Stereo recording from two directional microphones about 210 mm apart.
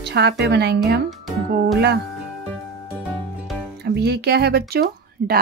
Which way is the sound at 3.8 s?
50° right (ahead or behind).